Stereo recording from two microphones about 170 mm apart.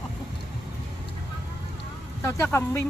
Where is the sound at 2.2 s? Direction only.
15° left (ahead or behind).